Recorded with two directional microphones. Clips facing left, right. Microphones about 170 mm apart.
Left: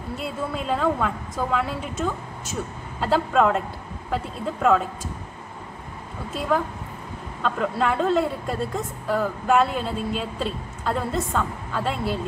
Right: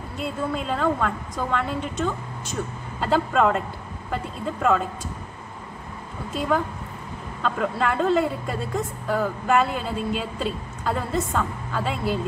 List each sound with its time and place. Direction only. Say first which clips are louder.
0.2 s a woman's voice: right 3 dB; centre (ahead or behind)
6.3 s a woman's voice: even; centre (ahead or behind)